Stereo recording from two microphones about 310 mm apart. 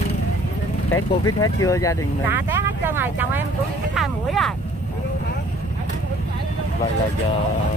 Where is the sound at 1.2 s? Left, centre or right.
Centre.